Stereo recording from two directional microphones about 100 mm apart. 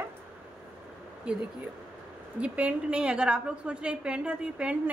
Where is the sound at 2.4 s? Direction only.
10° right (ahead or behind).